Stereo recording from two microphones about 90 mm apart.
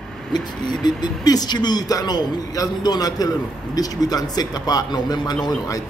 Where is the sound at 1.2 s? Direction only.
50° left (ahead or behind).